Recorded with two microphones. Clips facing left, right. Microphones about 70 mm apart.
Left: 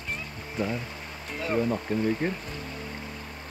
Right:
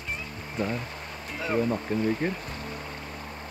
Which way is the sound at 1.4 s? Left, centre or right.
Centre.